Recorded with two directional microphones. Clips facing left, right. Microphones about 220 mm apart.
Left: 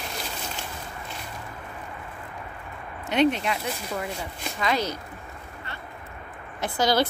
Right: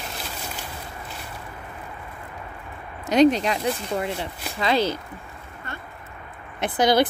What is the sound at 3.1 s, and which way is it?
A woman's voice, 40° right (ahead or behind).